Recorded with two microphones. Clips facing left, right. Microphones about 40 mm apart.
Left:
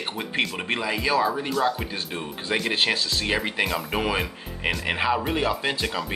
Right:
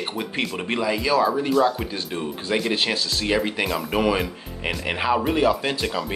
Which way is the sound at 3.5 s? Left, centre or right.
Centre.